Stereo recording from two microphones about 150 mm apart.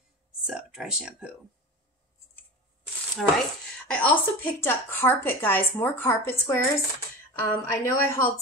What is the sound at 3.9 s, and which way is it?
A woman's voice, 10° left (ahead or behind).